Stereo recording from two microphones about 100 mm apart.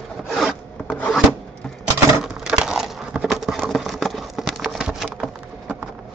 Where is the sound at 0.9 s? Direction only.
15° left (ahead or behind).